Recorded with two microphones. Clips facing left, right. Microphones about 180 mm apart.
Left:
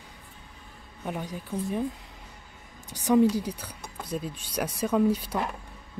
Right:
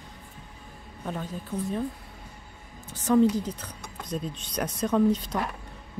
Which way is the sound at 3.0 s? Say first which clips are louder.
Even; 10° left (ahead or behind).